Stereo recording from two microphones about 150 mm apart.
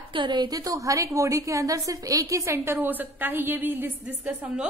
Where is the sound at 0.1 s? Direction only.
30° right (ahead or behind).